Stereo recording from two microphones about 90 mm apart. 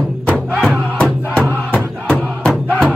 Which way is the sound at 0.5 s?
5° left (ahead or behind).